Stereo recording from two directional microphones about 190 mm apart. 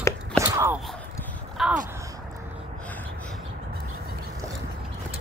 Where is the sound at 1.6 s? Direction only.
Centre (ahead or behind).